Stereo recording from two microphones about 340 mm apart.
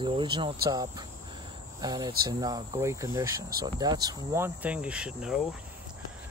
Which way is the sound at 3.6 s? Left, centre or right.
Centre.